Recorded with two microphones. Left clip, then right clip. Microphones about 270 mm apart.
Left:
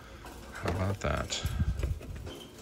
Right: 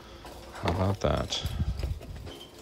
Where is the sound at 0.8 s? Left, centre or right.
Centre.